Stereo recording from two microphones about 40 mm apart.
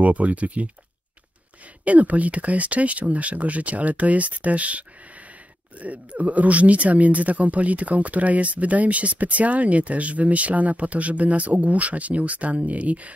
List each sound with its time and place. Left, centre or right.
0.0 s speech: right
1.9 s speech: right